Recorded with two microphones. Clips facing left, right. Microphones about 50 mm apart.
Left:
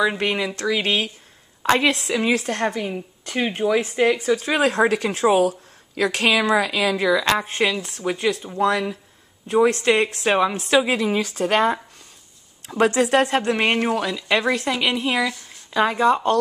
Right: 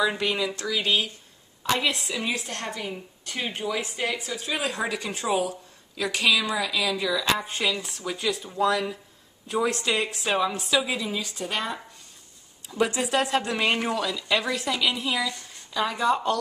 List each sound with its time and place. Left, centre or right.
0.2 s speech: left
0.6 s a woman's voice: left
2.5 s a woman's voice: left
7.9 s speech: left
9.7 s a woman's voice: left